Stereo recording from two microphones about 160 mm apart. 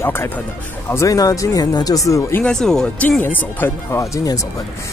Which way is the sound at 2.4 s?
5° left (ahead or behind).